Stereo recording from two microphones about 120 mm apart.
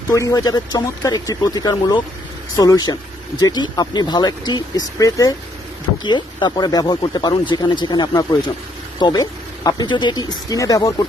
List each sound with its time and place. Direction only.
0.1 s speech: 30° left (ahead or behind)
6.0 s speech: 40° left (ahead or behind)